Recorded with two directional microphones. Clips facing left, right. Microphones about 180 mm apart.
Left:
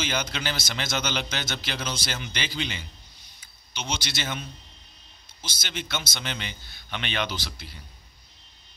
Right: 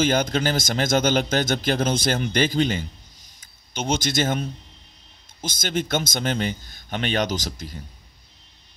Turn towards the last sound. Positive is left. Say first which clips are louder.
# right 8 dB
turn(degrees=-45)  # may be behind; listen again after turning